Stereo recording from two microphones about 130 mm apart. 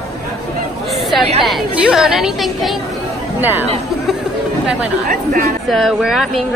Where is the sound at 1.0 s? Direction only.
Centre (ahead or behind).